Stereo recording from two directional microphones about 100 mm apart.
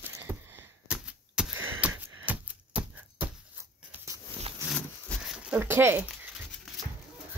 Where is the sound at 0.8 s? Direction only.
10° right (ahead or behind).